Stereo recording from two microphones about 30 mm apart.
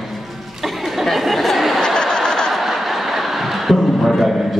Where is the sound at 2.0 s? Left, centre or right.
Left.